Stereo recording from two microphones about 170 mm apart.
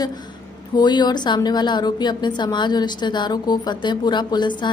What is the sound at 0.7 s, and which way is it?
A woman's voice, 25° left (ahead or behind).